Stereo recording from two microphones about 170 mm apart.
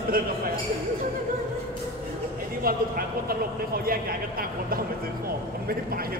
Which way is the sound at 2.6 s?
60° right (ahead or behind).